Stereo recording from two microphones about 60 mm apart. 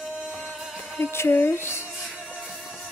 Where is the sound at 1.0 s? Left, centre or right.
Left.